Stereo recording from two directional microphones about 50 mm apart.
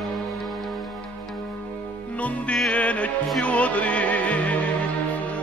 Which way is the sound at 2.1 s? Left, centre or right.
Left.